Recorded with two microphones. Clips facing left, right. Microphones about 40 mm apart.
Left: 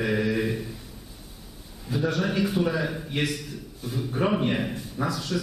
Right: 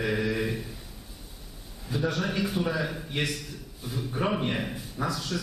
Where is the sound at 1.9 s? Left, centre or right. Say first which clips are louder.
Left 3 dB; centre.